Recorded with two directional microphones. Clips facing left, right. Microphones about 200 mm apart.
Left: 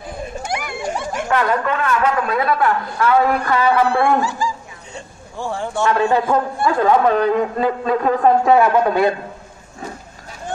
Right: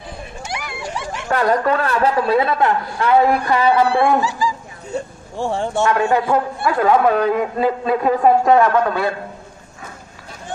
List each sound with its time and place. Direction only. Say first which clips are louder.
0.4 s a sound: left 3 dB; 50° left (ahead or behind)
1.3 s a man's voice: right 3 dB; 35° right (ahead or behind); by 4.2 s 15° right (ahead or behind)
4.2 s speech: even; 50° left (ahead or behind)
5.4 s a man's voice: right 3 dB; 25° right (ahead or behind)
6.1 s a man's voice: even; 10° right (ahead or behind)
8.5 s speech: even; 10° left (ahead or behind)